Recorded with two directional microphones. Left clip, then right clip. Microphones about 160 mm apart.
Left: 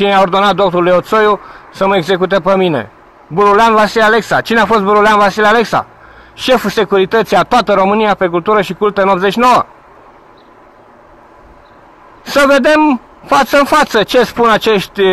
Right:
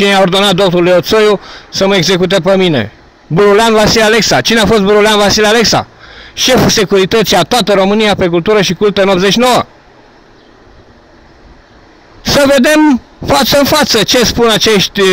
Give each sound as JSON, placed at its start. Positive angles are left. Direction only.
{"t": 0.0, "sound": "speech", "side_deg": -35}
{"t": 12.6, "sound": "speech", "side_deg": -40}